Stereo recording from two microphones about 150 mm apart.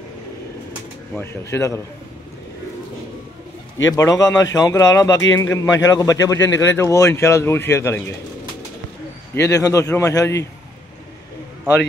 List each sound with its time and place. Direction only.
1.1 s speech: 15° left (ahead or behind)
3.9 s speech: 20° left (ahead or behind)
9.3 s speech: 20° left (ahead or behind)